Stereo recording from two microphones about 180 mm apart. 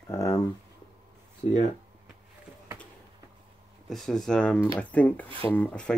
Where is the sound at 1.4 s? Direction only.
35° left (ahead or behind).